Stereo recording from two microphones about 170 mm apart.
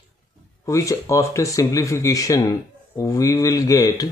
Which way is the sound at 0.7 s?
20° left (ahead or behind).